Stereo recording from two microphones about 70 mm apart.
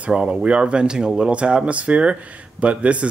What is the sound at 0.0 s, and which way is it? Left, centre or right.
Speech, centre.